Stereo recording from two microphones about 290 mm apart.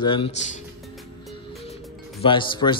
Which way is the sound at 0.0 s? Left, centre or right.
Centre.